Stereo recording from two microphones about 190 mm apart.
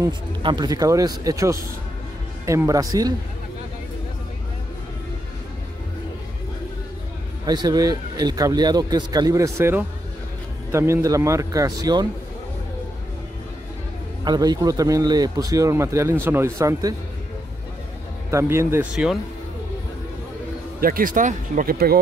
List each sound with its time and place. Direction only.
0.0 s a man's voice: 25° right (ahead or behind)
7.4 s a man's voice: 20° right (ahead or behind)
14.2 s a man's voice: 20° right (ahead or behind)
18.3 s a man's voice: 15° right (ahead or behind)
20.8 s speech: 50° right (ahead or behind)